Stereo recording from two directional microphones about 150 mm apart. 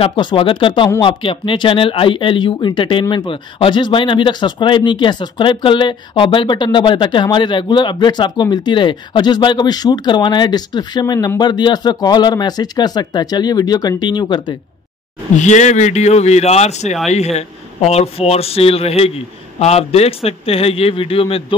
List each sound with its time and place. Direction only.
0.0 s speech: 35° left (ahead or behind)
15.3 s speech: 50° left (ahead or behind)